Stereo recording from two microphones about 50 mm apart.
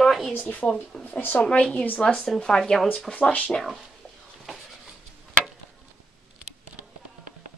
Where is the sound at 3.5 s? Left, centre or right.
Centre.